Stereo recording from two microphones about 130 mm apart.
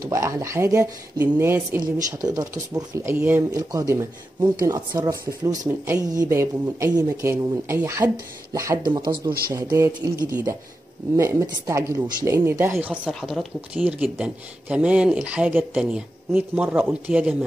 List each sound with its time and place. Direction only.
0.0 s speech: 25° right (ahead or behind)
1.8 s speech: 25° right (ahead or behind)
12.8 s speech: 10° right (ahead or behind)
13.7 s speech: 10° right (ahead or behind)